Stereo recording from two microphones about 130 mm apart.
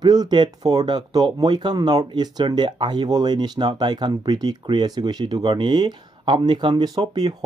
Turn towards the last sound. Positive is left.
turn(degrees=-35)  # may be behind; listen again after turning